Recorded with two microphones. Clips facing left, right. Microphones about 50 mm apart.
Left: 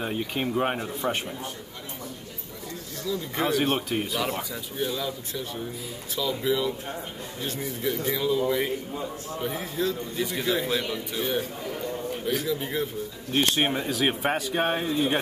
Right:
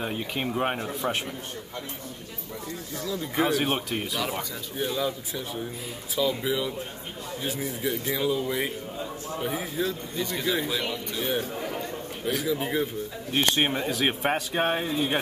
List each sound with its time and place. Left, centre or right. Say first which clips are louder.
0.0 s speech: left 1 dB; centre
3.1 s a man's voice: right 1 dB; centre
10.1 s speech: right 1 dB; centre
12.5 s a man's voice: right 2 dB; centre
13.3 s speech: even; centre